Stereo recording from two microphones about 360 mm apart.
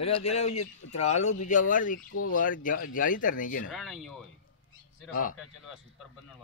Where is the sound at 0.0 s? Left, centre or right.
Centre.